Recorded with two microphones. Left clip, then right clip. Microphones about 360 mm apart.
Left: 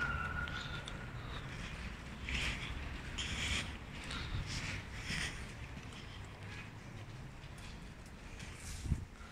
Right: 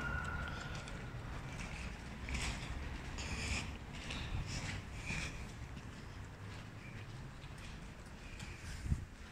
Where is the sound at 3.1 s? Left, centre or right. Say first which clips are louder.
Left 4 dB; centre.